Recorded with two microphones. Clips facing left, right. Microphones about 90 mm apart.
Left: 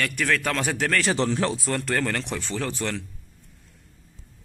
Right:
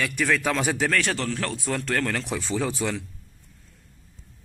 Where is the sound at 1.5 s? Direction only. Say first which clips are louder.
Left 1 dB; centre (ahead or behind).